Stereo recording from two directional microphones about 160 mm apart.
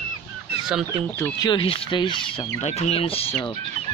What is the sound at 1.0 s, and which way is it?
Speech, 15° left (ahead or behind).